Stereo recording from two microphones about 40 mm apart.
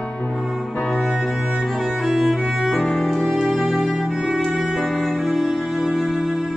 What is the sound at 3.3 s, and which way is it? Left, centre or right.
Music, centre.